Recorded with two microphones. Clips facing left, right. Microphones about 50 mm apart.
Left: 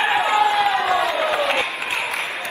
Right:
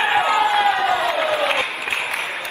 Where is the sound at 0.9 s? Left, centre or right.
Right.